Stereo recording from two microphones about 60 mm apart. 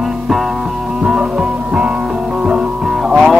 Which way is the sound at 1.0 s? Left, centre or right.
Centre.